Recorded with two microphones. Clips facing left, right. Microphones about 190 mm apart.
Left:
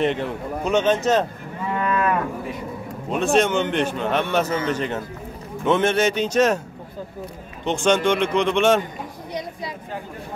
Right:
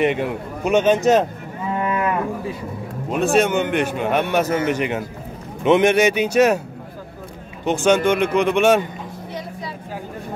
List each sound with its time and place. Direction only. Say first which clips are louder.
0.0 s a man's voice: right 3 dB; 10° right (ahead or behind)
1.8 s cattle: even; 20° right (ahead or behind)
3.1 s a man's voice: right 2 dB; 5° right (ahead or behind)
7.6 s a man's voice: right 3 dB; 5° right (ahead or behind)